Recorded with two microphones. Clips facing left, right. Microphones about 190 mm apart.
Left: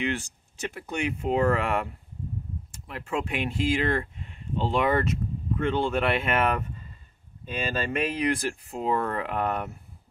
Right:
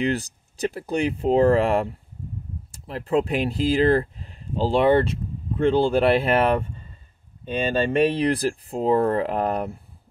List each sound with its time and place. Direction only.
0.0 s speech: 35° right (ahead or behind)
7.9 s speech: 35° right (ahead or behind)